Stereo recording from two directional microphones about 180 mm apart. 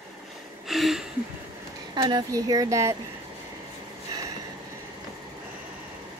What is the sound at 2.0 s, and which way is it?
Speech, 25° right (ahead or behind).